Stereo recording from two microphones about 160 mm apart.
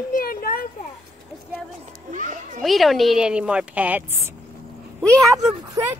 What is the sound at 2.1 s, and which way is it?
Children playing, 55° right (ahead or behind).